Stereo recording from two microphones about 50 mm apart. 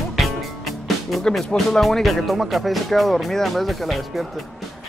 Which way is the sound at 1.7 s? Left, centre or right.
Centre.